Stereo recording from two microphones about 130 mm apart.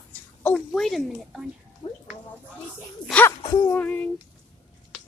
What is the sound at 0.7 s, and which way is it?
Speech, centre (ahead or behind).